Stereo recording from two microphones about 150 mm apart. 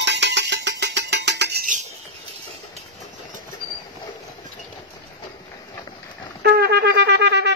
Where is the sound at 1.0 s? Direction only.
85° right.